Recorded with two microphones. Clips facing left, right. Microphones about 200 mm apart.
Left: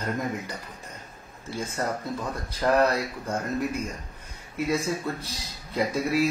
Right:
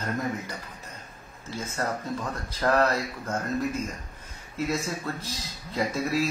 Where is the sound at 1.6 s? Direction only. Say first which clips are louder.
Left 1 dB; 15° left (ahead or behind).